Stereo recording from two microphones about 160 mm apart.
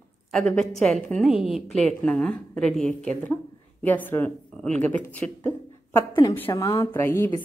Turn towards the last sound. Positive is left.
turn(degrees=15)  # may be behind; listen again after turning